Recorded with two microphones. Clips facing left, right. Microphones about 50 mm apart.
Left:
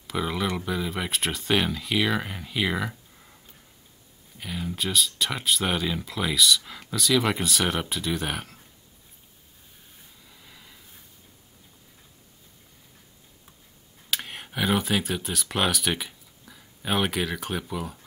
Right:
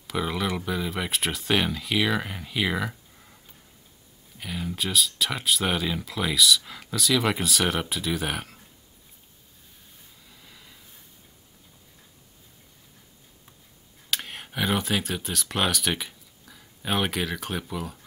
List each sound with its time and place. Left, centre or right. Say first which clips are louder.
0.0 s speech: even; centre
4.4 s speech: even; centre
10.2 s vehicle: even; centre
14.1 s speech: even; centre